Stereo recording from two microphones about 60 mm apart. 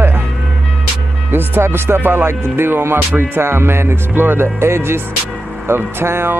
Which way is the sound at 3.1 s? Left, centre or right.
Right.